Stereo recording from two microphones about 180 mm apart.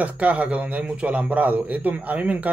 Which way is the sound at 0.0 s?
10° right (ahead or behind).